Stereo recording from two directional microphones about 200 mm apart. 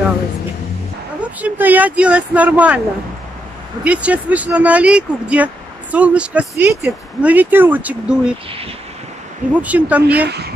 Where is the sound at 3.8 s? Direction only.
5° right (ahead or behind).